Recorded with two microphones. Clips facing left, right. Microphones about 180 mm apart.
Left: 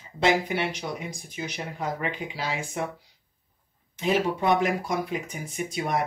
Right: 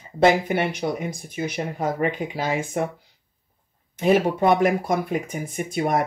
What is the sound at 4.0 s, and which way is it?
Speech, 55° right (ahead or behind).